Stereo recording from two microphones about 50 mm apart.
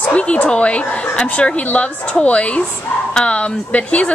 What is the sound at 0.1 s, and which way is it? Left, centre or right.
A woman's voice, left.